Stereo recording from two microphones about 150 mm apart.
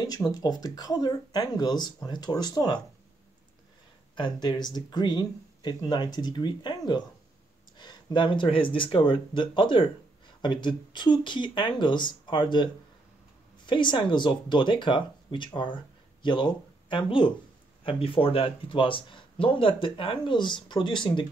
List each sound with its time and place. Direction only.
0.3 s speech: 25° left (ahead or behind)
4.1 s speech: 30° left (ahead or behind)
13.7 s speech: 30° left (ahead or behind)